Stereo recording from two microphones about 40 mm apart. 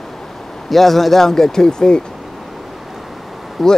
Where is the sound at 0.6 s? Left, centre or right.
Centre.